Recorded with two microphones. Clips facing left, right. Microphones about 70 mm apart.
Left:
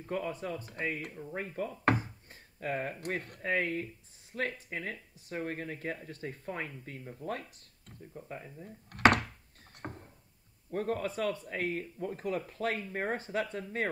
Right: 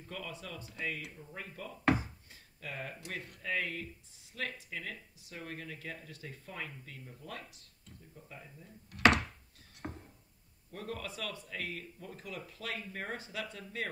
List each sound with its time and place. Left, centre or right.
0.0 s speech: left
9.8 s a sound: left
10.7 s speech: left